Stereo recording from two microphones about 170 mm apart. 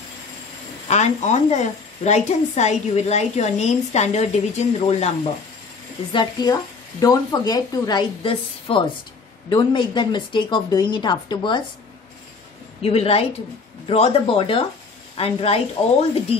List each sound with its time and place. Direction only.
0.8 s a woman's voice: 40° left (ahead or behind)
6.1 s speech: 20° left (ahead or behind)
12.8 s a woman's voice: 35° left (ahead or behind)